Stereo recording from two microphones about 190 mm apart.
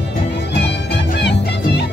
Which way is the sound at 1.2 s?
65° left (ahead or behind).